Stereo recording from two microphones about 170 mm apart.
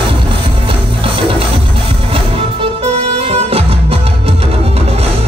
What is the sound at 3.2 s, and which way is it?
Music, 35° right (ahead or behind).